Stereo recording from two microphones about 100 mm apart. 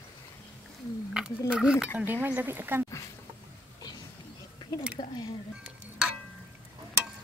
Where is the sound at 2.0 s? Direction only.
20° right (ahead or behind).